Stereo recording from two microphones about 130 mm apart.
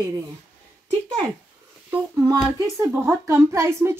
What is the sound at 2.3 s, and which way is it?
Speech, 25° right (ahead or behind).